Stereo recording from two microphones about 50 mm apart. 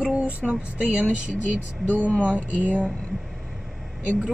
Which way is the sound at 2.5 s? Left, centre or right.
Right.